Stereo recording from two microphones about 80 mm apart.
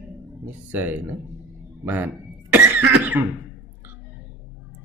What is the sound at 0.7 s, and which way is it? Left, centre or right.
Speech, right.